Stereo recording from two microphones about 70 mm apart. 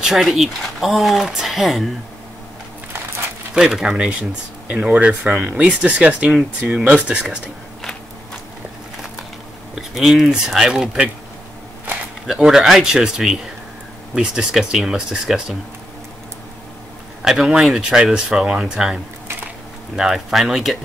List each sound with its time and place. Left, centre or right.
0.0 s speech: centre
3.5 s speech: centre
9.8 s speech: centre
12.3 s speech: centre
17.2 s speech: centre
20.0 s speech: centre